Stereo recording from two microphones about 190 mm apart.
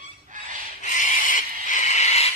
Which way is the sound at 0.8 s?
40° left (ahead or behind).